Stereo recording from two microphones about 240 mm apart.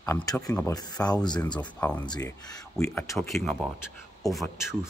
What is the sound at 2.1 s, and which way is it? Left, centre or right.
Speech, centre.